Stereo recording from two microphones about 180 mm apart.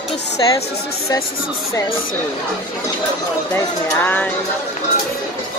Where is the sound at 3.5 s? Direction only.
10° left (ahead or behind).